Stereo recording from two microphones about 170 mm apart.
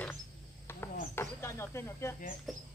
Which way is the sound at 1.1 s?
15° left (ahead or behind).